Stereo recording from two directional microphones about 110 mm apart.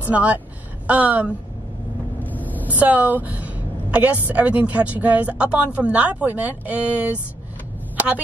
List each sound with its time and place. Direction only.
0.1 s a woman's voice: 15° right (ahead or behind)
2.3 s vehicle: 15° left (ahead or behind)
2.8 s a woman's voice: 15° right (ahead or behind)